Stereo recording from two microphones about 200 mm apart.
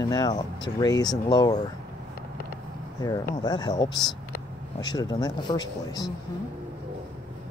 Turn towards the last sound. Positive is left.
turn(degrees=20)  # may be behind; listen again after turning